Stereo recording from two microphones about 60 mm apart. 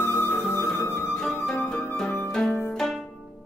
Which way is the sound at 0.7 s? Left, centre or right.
Left.